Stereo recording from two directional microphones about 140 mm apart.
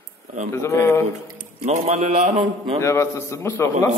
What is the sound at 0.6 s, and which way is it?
Speech, 20° left (ahead or behind).